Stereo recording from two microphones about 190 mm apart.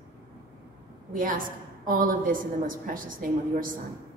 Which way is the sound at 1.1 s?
45° right (ahead or behind).